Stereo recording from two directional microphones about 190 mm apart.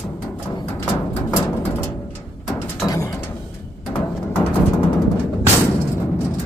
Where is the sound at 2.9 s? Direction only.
15° left (ahead or behind).